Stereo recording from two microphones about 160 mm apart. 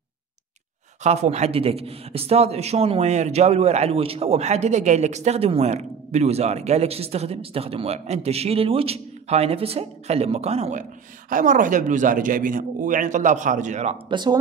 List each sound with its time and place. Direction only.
1.0 s a man's voice: 45° right (ahead or behind)
14.1 s speech: 25° right (ahead or behind)